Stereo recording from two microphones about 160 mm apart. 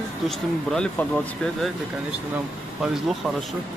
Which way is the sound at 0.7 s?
5° left (ahead or behind).